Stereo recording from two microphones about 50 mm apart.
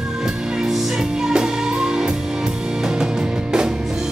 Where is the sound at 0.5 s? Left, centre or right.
Centre.